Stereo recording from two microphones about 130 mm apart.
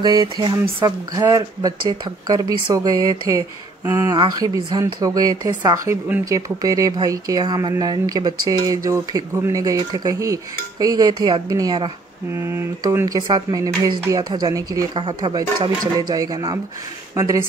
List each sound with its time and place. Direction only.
0.0 s a woman's voice: 35° right (ahead or behind)
0.7 s speech: 20° right (ahead or behind)
3.8 s speech: 20° right (ahead or behind)
4.1 s a woman's voice: 30° right (ahead or behind)
12.3 s speech: 20° right (ahead or behind)